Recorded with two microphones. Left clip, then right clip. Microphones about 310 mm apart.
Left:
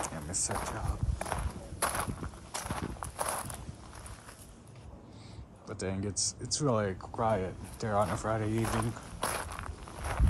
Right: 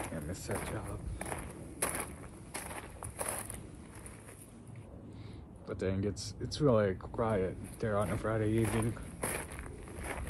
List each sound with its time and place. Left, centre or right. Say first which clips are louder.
0.5 s a sound: even; centre
2.5 s walk: left 5 dB; centre
5.7 s speech: right 1 dB; centre